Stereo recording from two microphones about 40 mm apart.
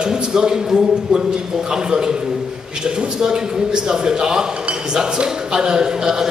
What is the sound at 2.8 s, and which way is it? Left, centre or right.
A man's voice, centre.